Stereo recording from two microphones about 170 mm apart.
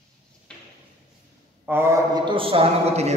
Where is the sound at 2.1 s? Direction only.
30° right (ahead or behind).